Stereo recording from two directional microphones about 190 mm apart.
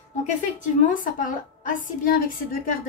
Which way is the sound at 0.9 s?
45° left (ahead or behind).